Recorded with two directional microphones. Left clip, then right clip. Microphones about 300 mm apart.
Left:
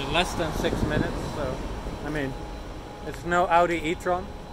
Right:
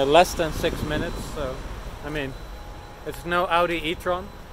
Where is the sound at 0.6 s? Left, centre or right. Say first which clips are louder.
Right 1 dB; centre.